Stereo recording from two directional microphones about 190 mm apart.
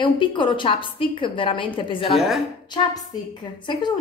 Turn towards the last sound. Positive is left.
turn(degrees=25)  # may be behind; listen again after turning